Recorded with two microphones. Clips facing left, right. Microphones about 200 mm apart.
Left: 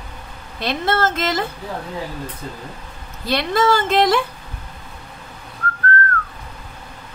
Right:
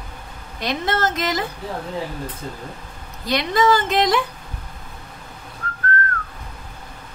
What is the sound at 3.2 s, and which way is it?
A woman's voice, 15° right (ahead or behind).